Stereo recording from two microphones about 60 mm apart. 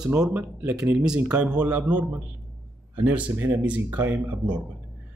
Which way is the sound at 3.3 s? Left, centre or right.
Right.